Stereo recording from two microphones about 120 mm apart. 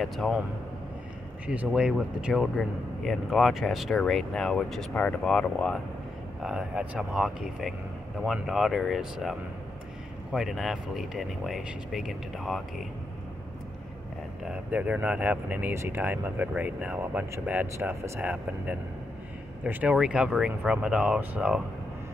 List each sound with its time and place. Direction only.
0.0 s speech: centre (ahead or behind)
1.5 s speech: 10° right (ahead or behind); by 5.8 s 10° left (ahead or behind)
6.4 s speech: 5° right (ahead or behind)
14.4 s speech: 10° right (ahead or behind)
19.6 s speech: 10° right (ahead or behind)